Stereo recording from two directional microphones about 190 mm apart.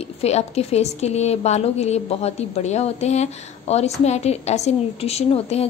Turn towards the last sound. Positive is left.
turn(degrees=35)  # may be behind; listen again after turning